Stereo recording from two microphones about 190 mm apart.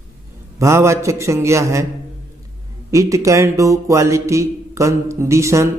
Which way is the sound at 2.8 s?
15° right (ahead or behind).